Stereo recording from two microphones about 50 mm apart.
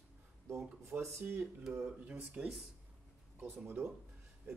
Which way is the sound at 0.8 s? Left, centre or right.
Right.